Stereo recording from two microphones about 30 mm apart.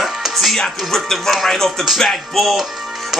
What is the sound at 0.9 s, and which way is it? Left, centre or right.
Music, centre.